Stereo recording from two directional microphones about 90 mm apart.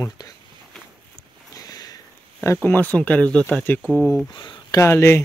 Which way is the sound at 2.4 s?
25° left (ahead or behind).